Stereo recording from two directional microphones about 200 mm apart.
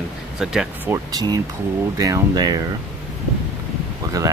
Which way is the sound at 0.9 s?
20° right (ahead or behind).